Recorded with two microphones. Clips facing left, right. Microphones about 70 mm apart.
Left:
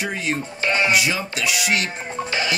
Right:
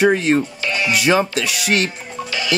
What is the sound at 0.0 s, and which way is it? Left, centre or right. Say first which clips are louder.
Speech: right 10 dB; right.